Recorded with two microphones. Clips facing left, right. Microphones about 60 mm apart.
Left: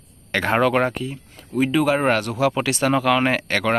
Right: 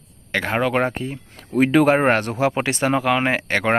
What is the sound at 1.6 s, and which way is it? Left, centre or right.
Speech, right.